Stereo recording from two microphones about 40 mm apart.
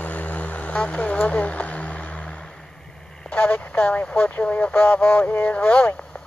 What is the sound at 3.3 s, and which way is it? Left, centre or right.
Speech, left.